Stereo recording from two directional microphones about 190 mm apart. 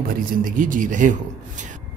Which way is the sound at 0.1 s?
45° right (ahead or behind).